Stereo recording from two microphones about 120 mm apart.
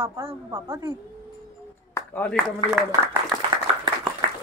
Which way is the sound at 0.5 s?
25° right (ahead or behind).